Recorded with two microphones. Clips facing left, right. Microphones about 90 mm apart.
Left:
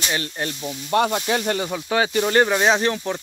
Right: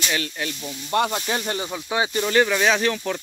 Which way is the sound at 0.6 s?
20° left (ahead or behind).